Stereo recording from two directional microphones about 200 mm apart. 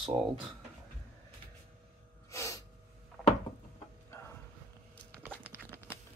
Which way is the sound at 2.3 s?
15° left (ahead or behind).